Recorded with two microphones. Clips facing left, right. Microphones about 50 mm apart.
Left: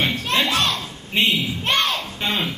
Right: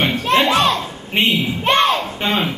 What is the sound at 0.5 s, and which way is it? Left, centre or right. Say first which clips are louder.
Children playing: right 6 dB; centre.